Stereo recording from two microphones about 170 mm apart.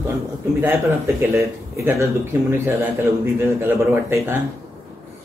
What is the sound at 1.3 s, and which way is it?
Speech, 15° right (ahead or behind).